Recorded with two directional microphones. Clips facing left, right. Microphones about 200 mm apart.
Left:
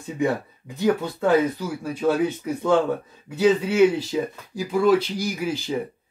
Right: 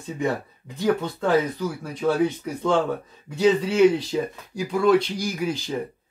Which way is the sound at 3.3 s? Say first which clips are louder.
Left 1 dB; 5° left (ahead or behind).